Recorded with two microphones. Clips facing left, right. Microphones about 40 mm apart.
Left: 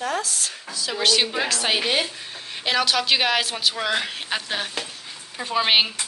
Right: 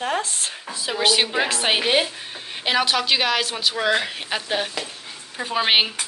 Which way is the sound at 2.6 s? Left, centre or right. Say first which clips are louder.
Right 1 dB; centre.